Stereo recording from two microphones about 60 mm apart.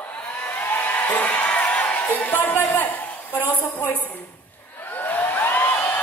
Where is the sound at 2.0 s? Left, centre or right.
Left.